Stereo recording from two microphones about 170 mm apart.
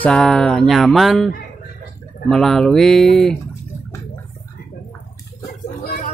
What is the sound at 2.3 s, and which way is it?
Music, centre (ahead or behind).